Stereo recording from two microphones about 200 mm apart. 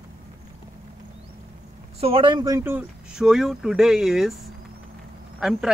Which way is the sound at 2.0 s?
25° right (ahead or behind).